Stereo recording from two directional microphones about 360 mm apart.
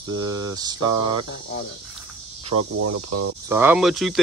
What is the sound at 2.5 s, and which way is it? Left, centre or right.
Speech, right.